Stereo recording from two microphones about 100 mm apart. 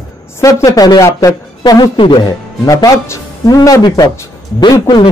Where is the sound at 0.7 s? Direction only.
40° left (ahead or behind).